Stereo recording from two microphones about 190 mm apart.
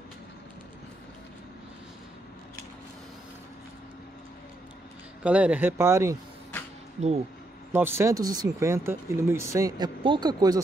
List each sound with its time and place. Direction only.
5.2 s speech: 5° right (ahead or behind)
7.7 s speech: 10° right (ahead or behind)